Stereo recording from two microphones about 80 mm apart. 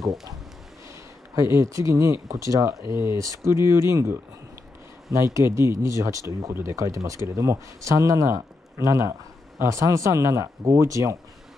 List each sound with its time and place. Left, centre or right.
0.0 s speech: centre
1.3 s speech: right